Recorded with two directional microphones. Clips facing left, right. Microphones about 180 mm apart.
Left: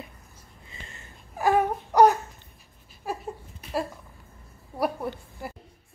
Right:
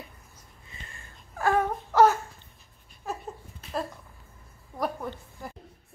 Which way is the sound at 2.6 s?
5° left (ahead or behind).